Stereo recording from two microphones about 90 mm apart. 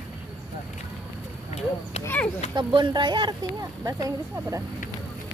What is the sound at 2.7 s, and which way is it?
Speech, 60° right (ahead or behind).